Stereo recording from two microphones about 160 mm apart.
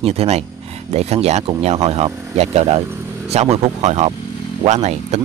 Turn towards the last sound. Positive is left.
turn(degrees=-45)  # may be behind; listen again after turning